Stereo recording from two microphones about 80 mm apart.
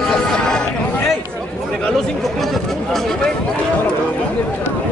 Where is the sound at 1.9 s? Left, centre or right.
Centre.